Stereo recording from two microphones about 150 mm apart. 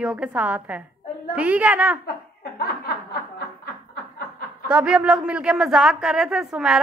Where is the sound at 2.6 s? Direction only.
90° left.